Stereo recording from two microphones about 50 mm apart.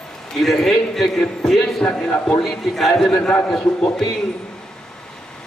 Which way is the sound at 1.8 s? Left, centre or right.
Centre.